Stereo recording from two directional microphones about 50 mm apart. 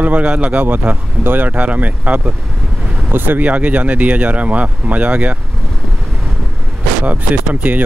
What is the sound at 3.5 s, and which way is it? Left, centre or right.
Speech, right.